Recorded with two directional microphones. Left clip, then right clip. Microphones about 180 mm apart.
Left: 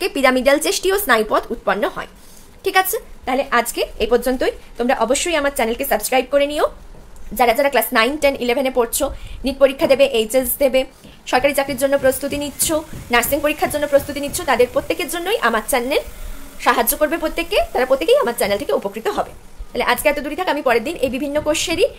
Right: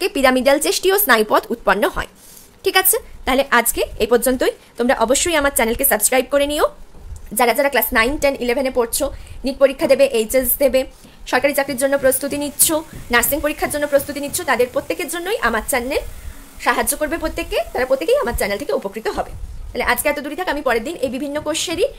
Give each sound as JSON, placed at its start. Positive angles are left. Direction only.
{"t": 0.0, "sound": "a woman's voice", "side_deg": -20}